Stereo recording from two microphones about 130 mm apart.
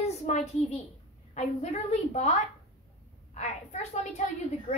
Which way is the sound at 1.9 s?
60° left (ahead or behind).